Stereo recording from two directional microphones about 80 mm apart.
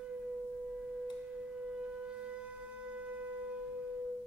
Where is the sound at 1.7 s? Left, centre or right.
Centre.